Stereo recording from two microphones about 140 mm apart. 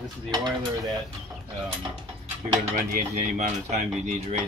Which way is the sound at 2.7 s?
65° right (ahead or behind).